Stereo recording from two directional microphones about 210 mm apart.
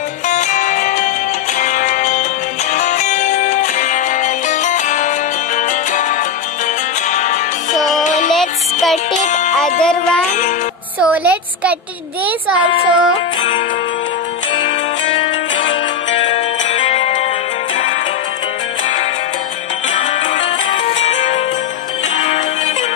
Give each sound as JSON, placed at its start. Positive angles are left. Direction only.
{"t": 0.3, "sound": "music", "side_deg": 35}
{"t": 9.8, "sound": "music", "side_deg": 5}
{"t": 10.2, "sound": "music", "side_deg": 35}
{"t": 11.0, "sound": "a woman's voice", "side_deg": -5}
{"t": 12.3, "sound": "child singing", "side_deg": -5}
{"t": 16.3, "sound": "music", "side_deg": 30}
{"t": 19.9, "sound": "music", "side_deg": 35}